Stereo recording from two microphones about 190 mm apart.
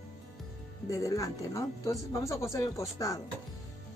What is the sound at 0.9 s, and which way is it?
Speech, 15° left (ahead or behind).